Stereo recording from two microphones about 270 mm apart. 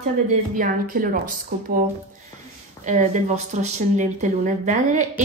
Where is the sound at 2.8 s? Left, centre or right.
Right.